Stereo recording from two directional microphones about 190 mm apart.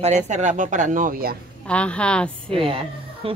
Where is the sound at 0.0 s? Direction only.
40° right (ahead or behind).